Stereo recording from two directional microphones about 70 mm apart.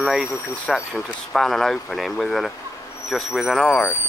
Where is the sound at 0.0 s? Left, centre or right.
Centre.